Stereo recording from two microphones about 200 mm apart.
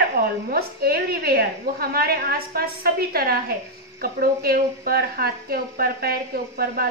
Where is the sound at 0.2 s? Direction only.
50° right (ahead or behind).